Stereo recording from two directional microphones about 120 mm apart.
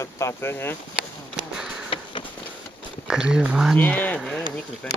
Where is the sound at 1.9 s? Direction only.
50° left (ahead or behind).